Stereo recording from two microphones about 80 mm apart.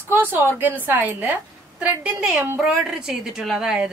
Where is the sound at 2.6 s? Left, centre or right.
Centre.